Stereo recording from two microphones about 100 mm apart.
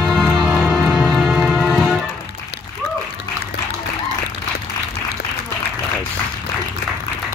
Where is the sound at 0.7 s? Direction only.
Centre (ahead or behind).